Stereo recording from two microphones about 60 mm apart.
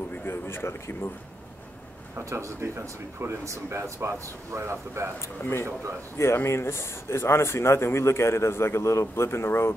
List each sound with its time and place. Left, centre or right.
0.3 s a man's voice: left
2.1 s speech: right
5.4 s a man's voice: left